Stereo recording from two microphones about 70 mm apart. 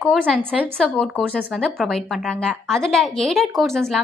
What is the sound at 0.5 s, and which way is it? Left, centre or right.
A woman's voice, centre.